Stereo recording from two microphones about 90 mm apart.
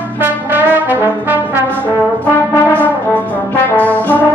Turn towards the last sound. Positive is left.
turn(degrees=15)  # may be behind; listen again after turning